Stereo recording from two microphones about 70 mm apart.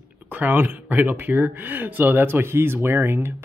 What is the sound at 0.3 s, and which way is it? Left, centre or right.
Speech, right.